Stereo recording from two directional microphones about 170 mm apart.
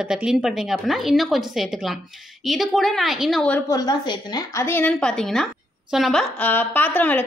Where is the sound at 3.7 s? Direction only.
25° left (ahead or behind).